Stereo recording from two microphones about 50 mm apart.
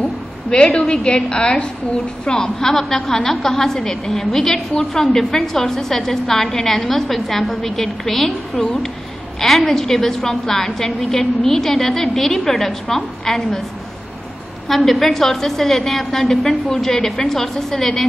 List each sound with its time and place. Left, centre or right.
0.5 s a woman's voice: centre
14.7 s a woman's voice: centre